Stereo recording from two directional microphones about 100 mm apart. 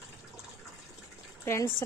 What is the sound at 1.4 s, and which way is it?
Speech, 25° left (ahead or behind).